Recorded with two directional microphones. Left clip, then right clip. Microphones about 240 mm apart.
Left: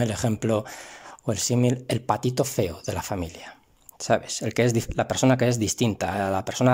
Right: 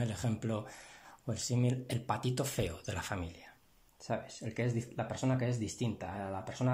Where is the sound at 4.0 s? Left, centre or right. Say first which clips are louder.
Left 15 dB; left.